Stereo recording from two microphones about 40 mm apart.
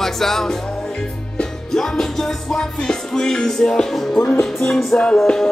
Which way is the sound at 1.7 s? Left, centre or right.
Centre.